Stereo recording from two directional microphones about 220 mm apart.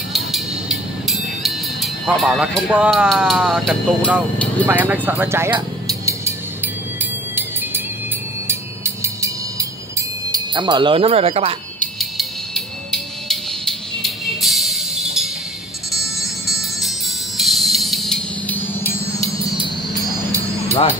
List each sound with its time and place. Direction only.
0.1 s music: centre (ahead or behind)
4.6 s music: 10° right (ahead or behind); by 11.5 s 25° right (ahead or behind)
11.8 s music: centre (ahead or behind)